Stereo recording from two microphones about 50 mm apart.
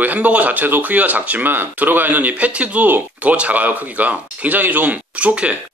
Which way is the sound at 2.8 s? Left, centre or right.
Right.